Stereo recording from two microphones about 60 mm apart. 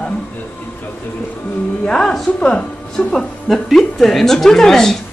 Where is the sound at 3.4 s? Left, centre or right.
Centre.